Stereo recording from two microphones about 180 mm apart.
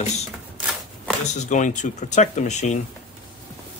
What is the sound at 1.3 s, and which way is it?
Speech, 40° left (ahead or behind).